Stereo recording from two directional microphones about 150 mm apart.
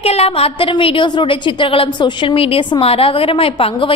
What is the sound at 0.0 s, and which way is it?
A woman's voice, 40° left (ahead or behind).